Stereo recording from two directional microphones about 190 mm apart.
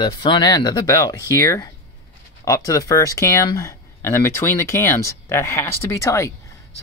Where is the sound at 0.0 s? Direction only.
25° left (ahead or behind).